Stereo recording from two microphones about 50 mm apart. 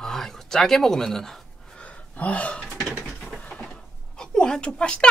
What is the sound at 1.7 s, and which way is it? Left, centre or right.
Gasp, left.